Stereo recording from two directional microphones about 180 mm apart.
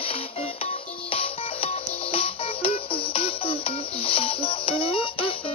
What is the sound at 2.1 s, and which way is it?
Music, 30° left (ahead or behind).